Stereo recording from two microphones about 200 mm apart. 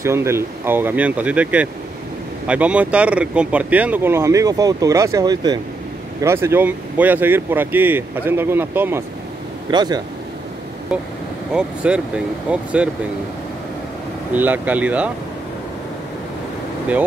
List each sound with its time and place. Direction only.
0.0 s speech: 15° right (ahead or behind)
9.7 s speech: 20° right (ahead or behind)
10.9 s speech: centre (ahead or behind)
14.3 s speech: 10° right (ahead or behind)